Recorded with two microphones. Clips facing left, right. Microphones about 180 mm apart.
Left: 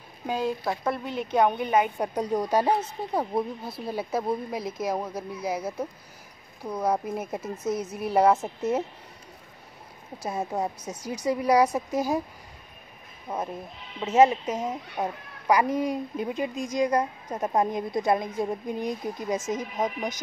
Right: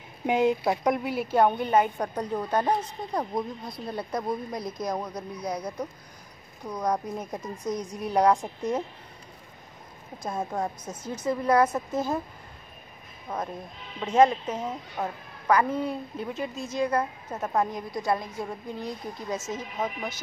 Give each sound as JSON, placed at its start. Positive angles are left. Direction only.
{"t": 0.3, "sound": "speech", "side_deg": -20}
{"t": 1.4, "sound": "a woman's voice", "side_deg": 10}
{"t": 10.1, "sound": "a woman's voice", "side_deg": 10}
{"t": 13.3, "sound": "a woman's voice", "side_deg": 10}